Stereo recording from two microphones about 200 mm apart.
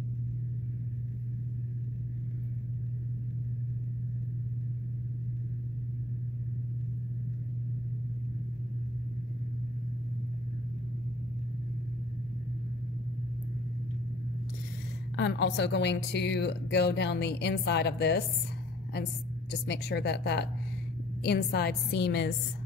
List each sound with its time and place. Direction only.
15.1 s a woman's voice: 60° left (ahead or behind)
19.6 s a woman's voice: 55° left (ahead or behind)